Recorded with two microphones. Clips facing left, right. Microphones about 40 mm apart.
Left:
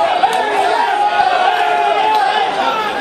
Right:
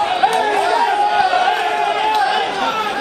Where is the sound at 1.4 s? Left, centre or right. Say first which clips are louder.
Left 3 dB; centre.